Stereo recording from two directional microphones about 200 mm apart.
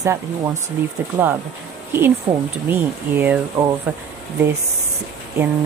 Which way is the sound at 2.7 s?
10° right (ahead or behind).